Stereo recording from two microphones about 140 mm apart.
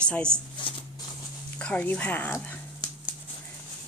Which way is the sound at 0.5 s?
35° left (ahead or behind).